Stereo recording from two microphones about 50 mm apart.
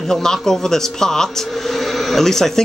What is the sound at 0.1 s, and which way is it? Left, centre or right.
Speech, centre.